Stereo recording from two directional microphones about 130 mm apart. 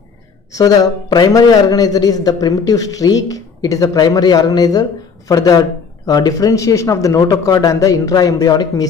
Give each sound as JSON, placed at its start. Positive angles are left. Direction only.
{"t": 0.5, "sound": "a man's voice", "side_deg": 30}